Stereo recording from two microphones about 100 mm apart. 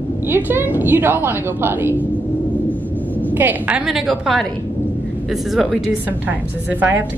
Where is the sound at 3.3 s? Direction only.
20° right (ahead or behind); by 4.4 s centre (ahead or behind).